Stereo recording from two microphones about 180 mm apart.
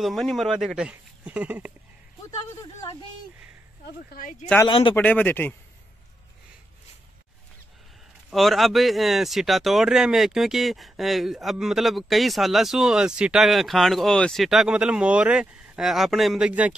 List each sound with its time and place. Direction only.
0.0 s speech: centre (ahead or behind)
3.8 s speech: 50° left (ahead or behind)
4.6 s speech: 30° left (ahead or behind)
4.9 s speech: 10° left (ahead or behind)
8.3 s speech: centre (ahead or behind)